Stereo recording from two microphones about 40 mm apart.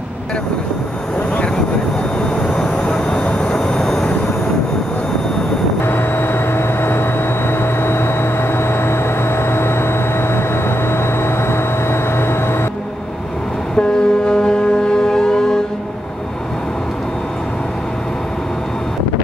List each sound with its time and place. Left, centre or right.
2.5 s vehicle: centre
5.9 s vehicle: left
7.8 s a sound: left
9.4 s vehicle: left
13.7 s music: left